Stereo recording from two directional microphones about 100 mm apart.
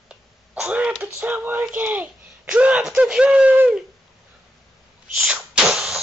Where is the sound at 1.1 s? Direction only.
20° right (ahead or behind).